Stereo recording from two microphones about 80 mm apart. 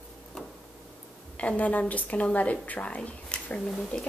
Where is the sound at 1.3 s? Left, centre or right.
Centre.